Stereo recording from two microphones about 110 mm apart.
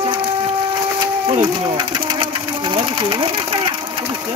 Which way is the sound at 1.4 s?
45° right (ahead or behind).